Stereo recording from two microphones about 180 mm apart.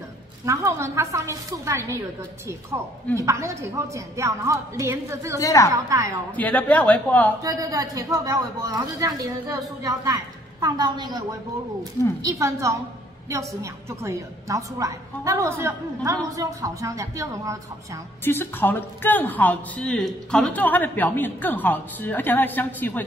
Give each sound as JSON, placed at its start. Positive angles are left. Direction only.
{"t": 0.5, "sound": "a woman's voice", "side_deg": -15}
{"t": 3.2, "sound": "a woman's voice", "side_deg": -15}
{"t": 5.4, "sound": "a woman's voice", "side_deg": 20}
{"t": 5.7, "sound": "a woman's voice", "side_deg": -20}
{"t": 6.3, "sound": "speech", "side_deg": 10}
{"t": 7.4, "sound": "a woman's voice", "side_deg": -20}
{"t": 12.3, "sound": "a woman's voice", "side_deg": -15}
{"t": 18.2, "sound": "speech", "side_deg": 10}